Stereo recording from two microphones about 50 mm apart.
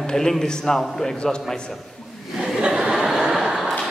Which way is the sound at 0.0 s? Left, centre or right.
Centre.